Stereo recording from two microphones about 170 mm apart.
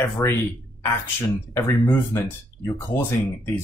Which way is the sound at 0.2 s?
15° left (ahead or behind).